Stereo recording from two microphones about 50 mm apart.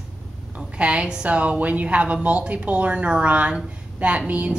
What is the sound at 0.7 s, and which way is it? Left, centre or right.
A woman's voice, right.